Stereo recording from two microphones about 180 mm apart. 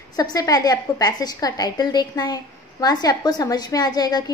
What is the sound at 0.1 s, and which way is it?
A woman's voice, 20° left (ahead or behind).